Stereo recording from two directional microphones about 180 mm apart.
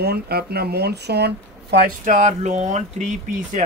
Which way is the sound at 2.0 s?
40° right (ahead or behind).